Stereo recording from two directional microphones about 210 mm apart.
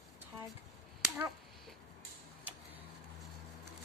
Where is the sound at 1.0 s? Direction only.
10° right (ahead or behind).